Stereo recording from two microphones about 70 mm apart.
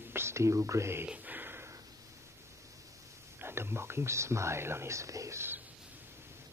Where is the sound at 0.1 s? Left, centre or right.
Right.